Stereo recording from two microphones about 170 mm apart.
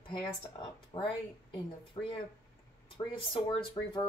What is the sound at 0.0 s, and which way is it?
Speech, 30° left (ahead or behind).